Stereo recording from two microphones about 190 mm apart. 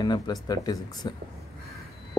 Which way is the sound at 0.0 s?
20° left (ahead or behind).